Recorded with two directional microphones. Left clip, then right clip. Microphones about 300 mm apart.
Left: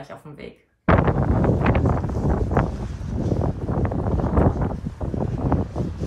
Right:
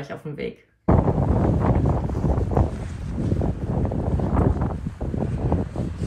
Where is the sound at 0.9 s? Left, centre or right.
Right.